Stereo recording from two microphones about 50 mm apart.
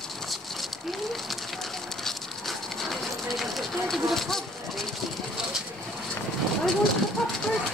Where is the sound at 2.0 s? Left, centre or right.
Centre.